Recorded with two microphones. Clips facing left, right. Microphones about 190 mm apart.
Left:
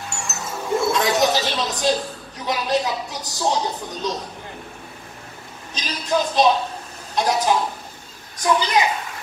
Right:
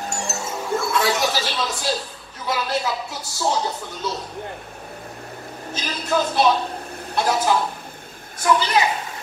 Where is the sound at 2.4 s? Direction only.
20° left (ahead or behind).